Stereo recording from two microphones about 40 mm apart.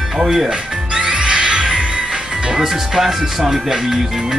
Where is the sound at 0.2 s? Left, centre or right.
Centre.